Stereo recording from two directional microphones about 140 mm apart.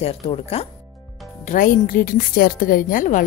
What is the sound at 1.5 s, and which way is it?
A woman's voice, 85° left.